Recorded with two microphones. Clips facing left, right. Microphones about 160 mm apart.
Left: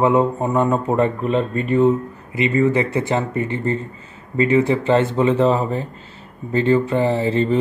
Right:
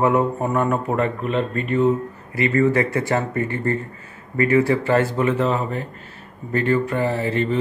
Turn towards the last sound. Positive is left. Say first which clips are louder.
# left 4 dB
turn(degrees=30)  # may be behind; listen again after turning